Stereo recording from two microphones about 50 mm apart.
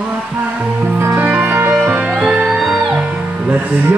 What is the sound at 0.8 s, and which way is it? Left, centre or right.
Music, right.